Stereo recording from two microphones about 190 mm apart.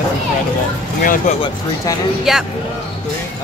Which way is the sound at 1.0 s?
45° left (ahead or behind).